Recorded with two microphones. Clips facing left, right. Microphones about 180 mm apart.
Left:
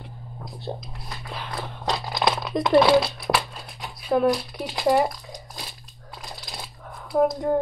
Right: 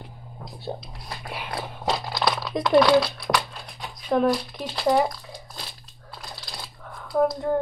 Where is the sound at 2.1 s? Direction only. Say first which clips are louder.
Left 1 dB; 20° left (ahead or behind).